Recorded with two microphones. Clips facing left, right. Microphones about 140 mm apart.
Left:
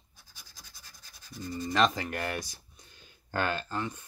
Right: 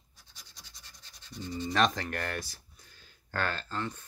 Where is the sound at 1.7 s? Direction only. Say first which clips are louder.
Left 1 dB; centre (ahead or behind).